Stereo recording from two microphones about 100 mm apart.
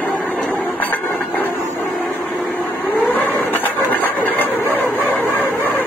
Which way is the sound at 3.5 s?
20° left (ahead or behind).